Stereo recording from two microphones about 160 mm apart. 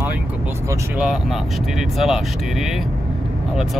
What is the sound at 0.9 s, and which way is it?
Speech, 5° right (ahead or behind).